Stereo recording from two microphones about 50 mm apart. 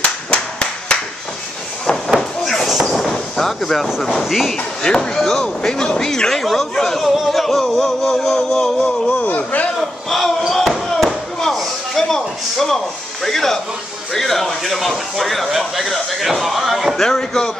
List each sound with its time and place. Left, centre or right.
0.0 s clapping: left
2.1 s a sound: centre
4.2 s speech: centre
4.8 s speech: centre
9.2 s a man's voice: left
9.8 s a man's voice: centre
10.5 s slam: centre
14.1 s speech: centre
16.9 s speech: centre